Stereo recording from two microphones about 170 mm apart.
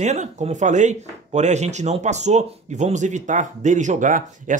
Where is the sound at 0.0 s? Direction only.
45° right (ahead or behind).